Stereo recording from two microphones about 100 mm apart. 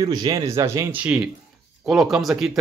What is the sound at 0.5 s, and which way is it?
Speech, 30° right (ahead or behind).